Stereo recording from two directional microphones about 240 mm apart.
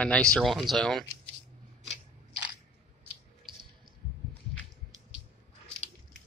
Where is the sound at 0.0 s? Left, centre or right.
Centre.